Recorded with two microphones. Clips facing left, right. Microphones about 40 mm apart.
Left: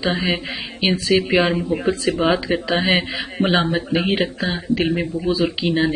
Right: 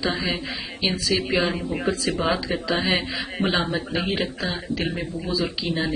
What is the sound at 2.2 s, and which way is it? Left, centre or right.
Speech, left.